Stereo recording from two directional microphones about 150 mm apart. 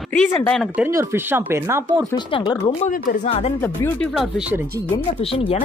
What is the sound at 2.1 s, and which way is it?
Speech, 30° left (ahead or behind).